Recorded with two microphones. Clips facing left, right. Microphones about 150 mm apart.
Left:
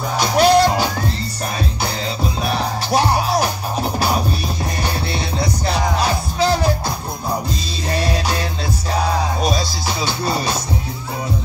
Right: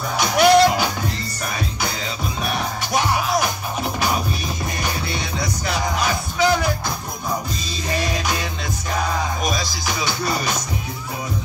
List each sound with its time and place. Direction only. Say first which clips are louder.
0.2 s music: left 1 dB; 30° left (ahead or behind)
2.4 s music: left 2 dB; 35° left (ahead or behind)
4.8 s music: left 3 dB; 30° left (ahead or behind)
7.9 s music: left 3 dB; 35° left (ahead or behind)